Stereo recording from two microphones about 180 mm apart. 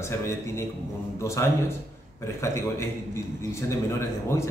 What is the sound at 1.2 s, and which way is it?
Speech, 15° left (ahead or behind).